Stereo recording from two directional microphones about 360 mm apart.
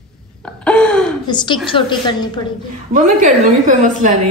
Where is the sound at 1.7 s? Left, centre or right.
Centre.